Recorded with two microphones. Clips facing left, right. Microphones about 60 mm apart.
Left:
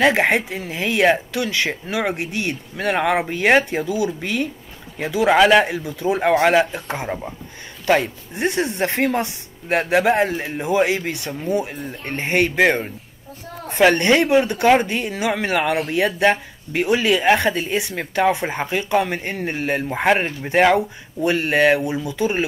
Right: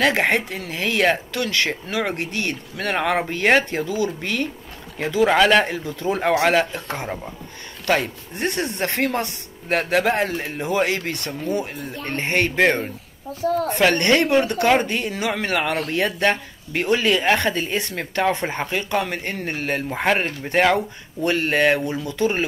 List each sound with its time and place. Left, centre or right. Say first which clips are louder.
0.0 s speech: left 2 dB; centre
6.6 s speech: left 3 dB; left
11.7 s speech: even; centre
13.3 s a woman's voice: right 14 dB; right
13.7 s speech: left 5 dB; centre